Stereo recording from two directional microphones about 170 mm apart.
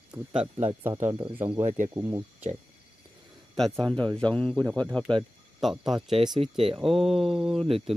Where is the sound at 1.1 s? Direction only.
30° right (ahead or behind).